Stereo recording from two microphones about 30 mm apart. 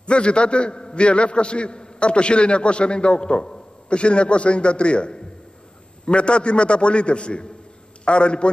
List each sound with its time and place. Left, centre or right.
0.0 s a man's voice: left